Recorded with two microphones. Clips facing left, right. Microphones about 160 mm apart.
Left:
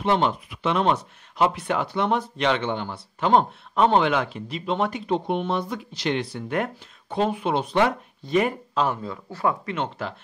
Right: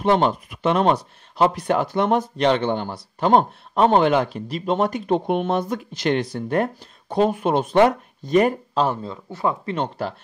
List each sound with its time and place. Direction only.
0.0 s speech: 40° right (ahead or behind); by 9.6 s 20° right (ahead or behind)
9.7 s speech: 40° right (ahead or behind)